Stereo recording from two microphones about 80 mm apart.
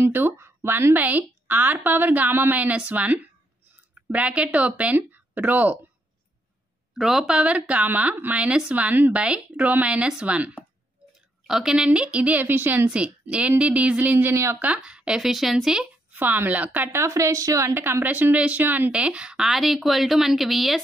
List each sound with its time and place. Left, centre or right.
0.0 s speech: right
7.0 s speech: centre; by 14.3 s right
14.3 s speech: right
14.8 s speech: centre
16.1 s speech: right
17.0 s speech: right
17.7 s speech: right; by 20.8 s centre